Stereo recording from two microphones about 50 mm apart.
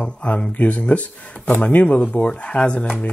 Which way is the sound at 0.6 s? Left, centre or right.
Left.